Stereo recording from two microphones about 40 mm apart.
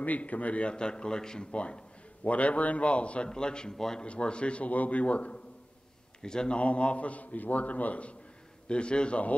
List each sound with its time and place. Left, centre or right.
0.0 s a man's voice: left; by 1.5 s centre
1.5 s a man's voice: left; by 4.0 s centre
4.0 s a man's voice: left
6.2 s a man's voice: centre
6.6 s a man's voice: left